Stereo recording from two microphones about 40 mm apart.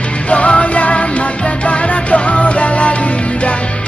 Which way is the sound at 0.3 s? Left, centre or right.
Left.